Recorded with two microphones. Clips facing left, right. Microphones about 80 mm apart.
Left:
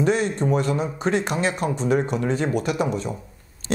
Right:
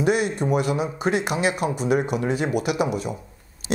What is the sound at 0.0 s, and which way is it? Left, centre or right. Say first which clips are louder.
Speech: even; centre.